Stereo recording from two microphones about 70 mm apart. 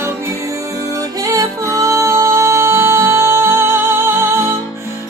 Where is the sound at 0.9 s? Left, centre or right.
Right.